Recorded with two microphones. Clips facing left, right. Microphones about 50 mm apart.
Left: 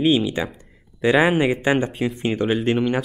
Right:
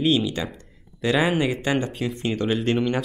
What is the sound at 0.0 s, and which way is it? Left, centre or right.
Speech, centre.